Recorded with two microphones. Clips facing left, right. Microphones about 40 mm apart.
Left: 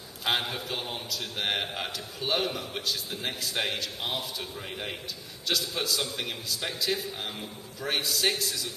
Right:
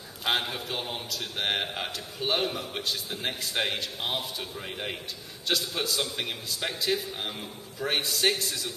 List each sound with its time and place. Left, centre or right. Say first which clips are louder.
0.2 s a man's voice: even; centre